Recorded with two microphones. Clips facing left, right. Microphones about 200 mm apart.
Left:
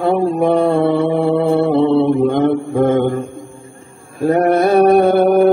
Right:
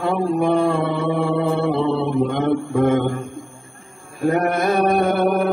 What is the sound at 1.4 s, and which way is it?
Mantra, 30° left (ahead or behind).